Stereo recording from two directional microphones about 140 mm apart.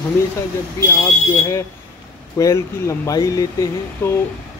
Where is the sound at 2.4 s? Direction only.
25° left (ahead or behind).